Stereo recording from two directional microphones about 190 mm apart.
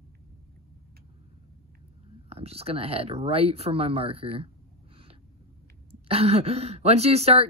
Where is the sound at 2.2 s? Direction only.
30° right (ahead or behind).